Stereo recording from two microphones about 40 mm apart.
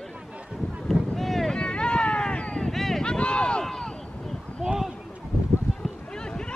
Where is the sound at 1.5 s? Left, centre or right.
Left.